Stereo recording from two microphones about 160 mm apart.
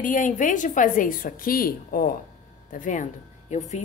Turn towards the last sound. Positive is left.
turn(degrees=45)  # may be behind; listen again after turning